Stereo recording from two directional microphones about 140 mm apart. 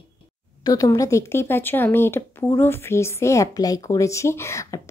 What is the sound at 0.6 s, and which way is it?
Speech, 25° left (ahead or behind).